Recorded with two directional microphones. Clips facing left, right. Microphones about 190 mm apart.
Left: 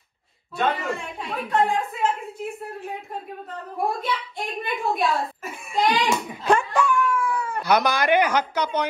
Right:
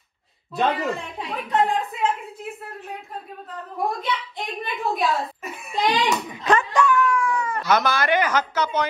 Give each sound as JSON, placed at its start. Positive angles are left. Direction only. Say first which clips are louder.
{"t": 0.6, "sound": "a child's voice", "louder": "right 2 dB", "side_deg": 0}
{"t": 4.0, "sound": "a child's voice", "louder": "even", "side_deg": 0}